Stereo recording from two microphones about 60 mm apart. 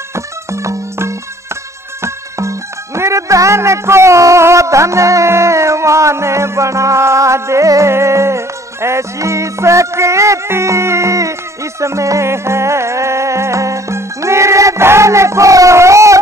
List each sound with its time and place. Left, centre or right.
0.1 s music: right
2.0 s speech: right
7.9 s music: right